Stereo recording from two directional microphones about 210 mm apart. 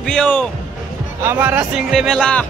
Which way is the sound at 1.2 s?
10° right (ahead or behind).